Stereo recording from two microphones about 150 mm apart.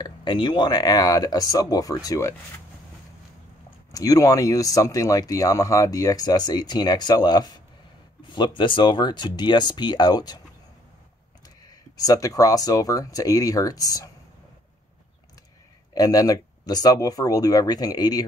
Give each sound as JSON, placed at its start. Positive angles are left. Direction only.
{"t": 0.0, "sound": "speech", "side_deg": 30}
{"t": 3.9, "sound": "speech", "side_deg": 25}
{"t": 12.0, "sound": "speech", "side_deg": 25}
{"t": 15.9, "sound": "speech", "side_deg": 25}